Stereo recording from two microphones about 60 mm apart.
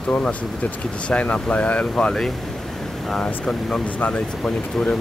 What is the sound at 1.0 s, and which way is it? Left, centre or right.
Speech, left.